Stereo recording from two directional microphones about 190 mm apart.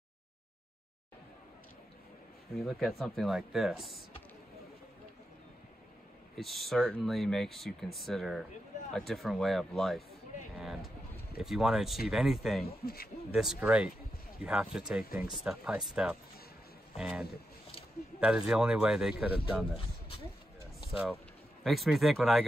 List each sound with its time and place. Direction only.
2.5 s speech: centre (ahead or behind)
6.3 s speech: centre (ahead or behind)
10.6 s a sound: centre (ahead or behind)
11.4 s speech: centre (ahead or behind)
12.6 s speech: 55° left (ahead or behind)
13.3 s speech: 5° right (ahead or behind)
21.6 s speech: centre (ahead or behind)